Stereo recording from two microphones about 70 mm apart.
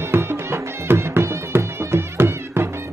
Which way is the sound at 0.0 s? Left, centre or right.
Right.